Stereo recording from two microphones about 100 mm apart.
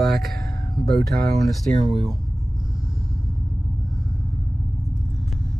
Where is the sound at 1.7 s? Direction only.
90° right.